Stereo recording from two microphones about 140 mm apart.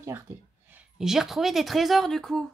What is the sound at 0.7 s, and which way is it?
A woman's voice, 5° right (ahead or behind).